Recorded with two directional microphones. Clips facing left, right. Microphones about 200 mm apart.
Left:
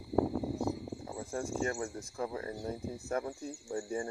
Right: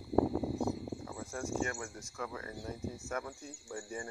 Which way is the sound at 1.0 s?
30° left (ahead or behind).